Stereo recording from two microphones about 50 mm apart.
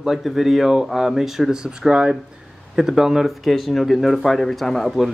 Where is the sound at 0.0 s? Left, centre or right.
Centre.